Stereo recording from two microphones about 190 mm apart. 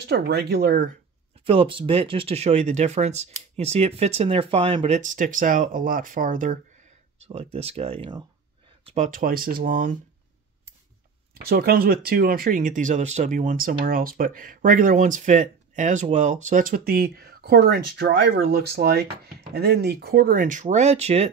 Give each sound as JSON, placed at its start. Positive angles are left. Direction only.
{"t": 0.0, "sound": "speech", "side_deg": -60}
{"t": 1.4, "sound": "speech", "side_deg": -30}
{"t": 7.5, "sound": "speech", "side_deg": -30}
{"t": 8.8, "sound": "speech", "side_deg": -40}
{"t": 11.3, "sound": "speech", "side_deg": -55}